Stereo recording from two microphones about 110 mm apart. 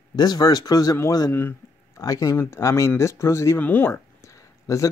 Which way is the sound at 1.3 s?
20° left (ahead or behind).